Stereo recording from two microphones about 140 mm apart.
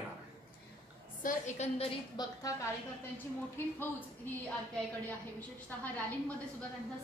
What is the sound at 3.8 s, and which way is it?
Speech, 15° left (ahead or behind).